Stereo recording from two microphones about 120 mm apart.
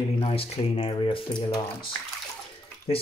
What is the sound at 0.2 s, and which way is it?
Speech, 55° left (ahead or behind).